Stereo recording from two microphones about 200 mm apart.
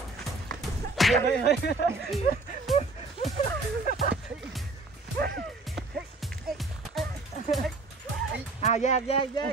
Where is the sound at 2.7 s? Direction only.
Centre (ahead or behind).